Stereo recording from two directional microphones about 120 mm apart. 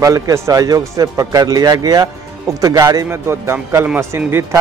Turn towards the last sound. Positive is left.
turn(degrees=-25)  # may be behind; listen again after turning